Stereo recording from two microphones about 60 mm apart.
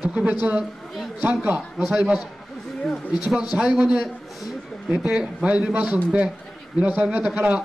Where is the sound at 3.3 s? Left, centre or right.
Centre.